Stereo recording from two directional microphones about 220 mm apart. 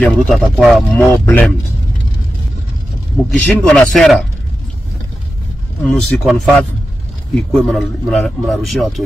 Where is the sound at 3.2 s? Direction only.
Centre (ahead or behind).